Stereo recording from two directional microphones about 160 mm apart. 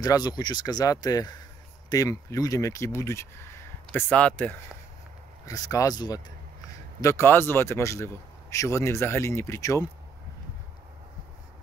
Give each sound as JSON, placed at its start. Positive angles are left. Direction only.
{"t": 0.0, "sound": "a man's voice", "side_deg": 25}
{"t": 5.4, "sound": "a man's voice", "side_deg": 20}